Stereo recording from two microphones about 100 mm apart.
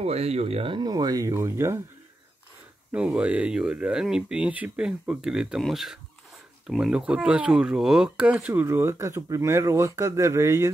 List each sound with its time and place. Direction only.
0.0 s speech: 90° right
0.7 s speech: 40° right (ahead or behind)
2.9 s speech: 10° right (ahead or behind); by 10.7 s 30° right (ahead or behind)